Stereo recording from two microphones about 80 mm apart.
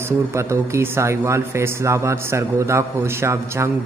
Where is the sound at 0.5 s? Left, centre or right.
Right.